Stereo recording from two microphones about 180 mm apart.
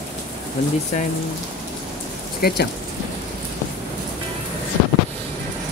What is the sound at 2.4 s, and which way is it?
Speech, 60° left (ahead or behind).